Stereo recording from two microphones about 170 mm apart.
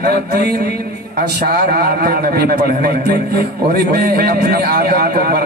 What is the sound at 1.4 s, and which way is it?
A man's voice, 60° right (ahead or behind).